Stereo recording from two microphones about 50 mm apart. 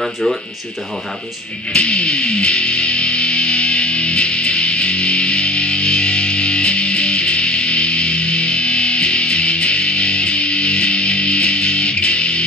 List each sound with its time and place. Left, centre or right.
0.0 s speech: centre
1.8 s music: left